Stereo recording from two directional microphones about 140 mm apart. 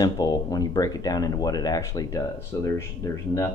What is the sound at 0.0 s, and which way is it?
Speech, 25° left (ahead or behind).